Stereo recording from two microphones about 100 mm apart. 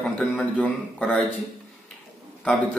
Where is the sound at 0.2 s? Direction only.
Centre (ahead or behind).